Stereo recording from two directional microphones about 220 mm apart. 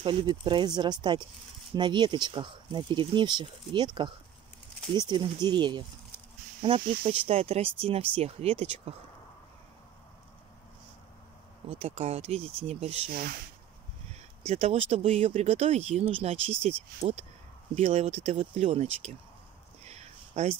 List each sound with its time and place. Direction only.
0.0 s speech: 20° right (ahead or behind)
11.7 s speech: 25° right (ahead or behind)
14.4 s speech: 30° right (ahead or behind)
19.8 s a sound: 30° right (ahead or behind)